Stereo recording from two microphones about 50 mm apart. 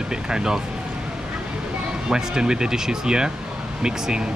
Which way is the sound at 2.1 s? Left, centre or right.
Centre.